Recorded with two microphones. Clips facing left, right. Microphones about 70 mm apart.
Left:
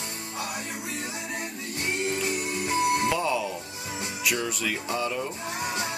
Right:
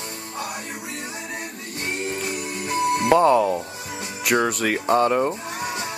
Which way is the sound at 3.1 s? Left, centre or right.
Right.